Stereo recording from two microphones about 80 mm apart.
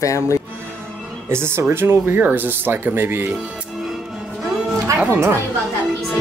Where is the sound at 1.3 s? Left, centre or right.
Right.